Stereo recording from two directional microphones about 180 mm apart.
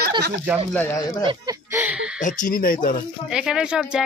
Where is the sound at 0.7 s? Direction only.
10° left (ahead or behind).